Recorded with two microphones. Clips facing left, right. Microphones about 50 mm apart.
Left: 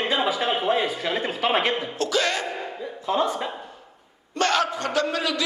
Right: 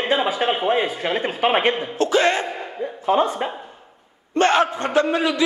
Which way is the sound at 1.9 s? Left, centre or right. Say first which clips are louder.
Right 6 dB; right.